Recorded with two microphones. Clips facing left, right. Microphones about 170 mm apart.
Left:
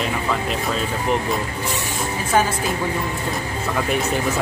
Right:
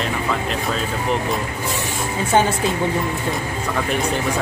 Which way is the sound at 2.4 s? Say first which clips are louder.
Right 2 dB; 25° right (ahead or behind).